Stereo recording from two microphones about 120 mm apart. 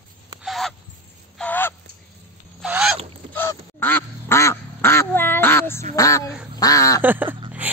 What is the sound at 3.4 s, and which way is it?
Quack, 20° left (ahead or behind).